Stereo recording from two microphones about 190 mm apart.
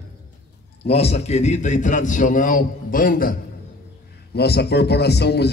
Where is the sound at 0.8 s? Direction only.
30° left (ahead or behind); by 3.3 s 45° left (ahead or behind).